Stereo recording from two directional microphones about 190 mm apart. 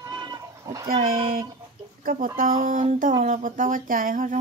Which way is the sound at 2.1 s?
50° right (ahead or behind).